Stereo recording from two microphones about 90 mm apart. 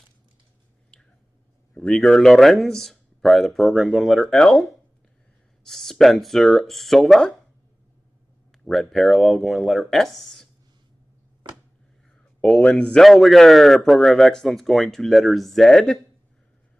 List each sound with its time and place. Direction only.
1.9 s speech: 5° left (ahead or behind)
8.5 s speech: 5° left (ahead or behind)
11.4 s a sound: 60° right (ahead or behind)
12.4 s speech: 10° left (ahead or behind)